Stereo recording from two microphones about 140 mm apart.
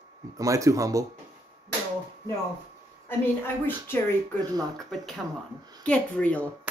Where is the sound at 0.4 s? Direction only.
25° right (ahead or behind).